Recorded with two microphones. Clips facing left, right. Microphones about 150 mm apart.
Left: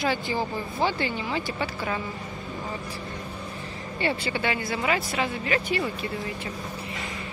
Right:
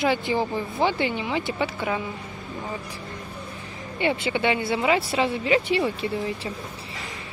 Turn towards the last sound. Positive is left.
turn(degrees=-25)  # may be behind; listen again after turning